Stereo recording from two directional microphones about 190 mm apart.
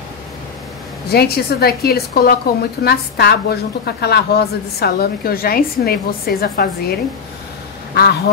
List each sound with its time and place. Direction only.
1.0 s a woman's voice: 55° left (ahead or behind)